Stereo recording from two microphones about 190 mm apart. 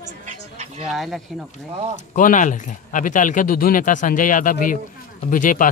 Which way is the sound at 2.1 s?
45° left (ahead or behind).